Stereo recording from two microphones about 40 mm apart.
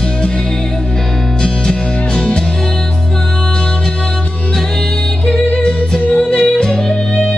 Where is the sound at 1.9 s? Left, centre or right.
Left.